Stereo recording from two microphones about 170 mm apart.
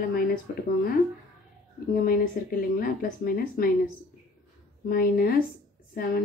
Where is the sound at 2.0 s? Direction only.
60° left (ahead or behind).